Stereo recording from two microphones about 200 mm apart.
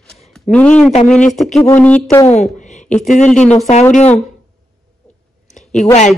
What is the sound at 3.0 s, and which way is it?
Speech, 35° left (ahead or behind).